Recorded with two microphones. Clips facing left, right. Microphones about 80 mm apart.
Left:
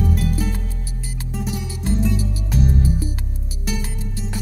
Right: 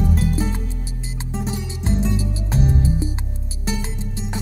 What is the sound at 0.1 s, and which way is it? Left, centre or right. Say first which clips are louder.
Music: right 1 dB; right.